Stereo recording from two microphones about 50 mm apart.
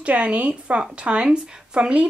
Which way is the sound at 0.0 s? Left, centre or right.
Right.